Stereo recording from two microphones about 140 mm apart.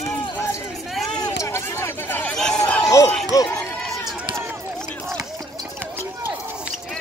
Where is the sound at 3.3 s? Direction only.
25° left (ahead or behind).